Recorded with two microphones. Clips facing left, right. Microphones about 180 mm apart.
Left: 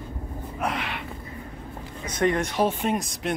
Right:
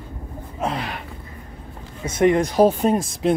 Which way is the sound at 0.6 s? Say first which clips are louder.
Right 3 dB; 30° right (ahead or behind).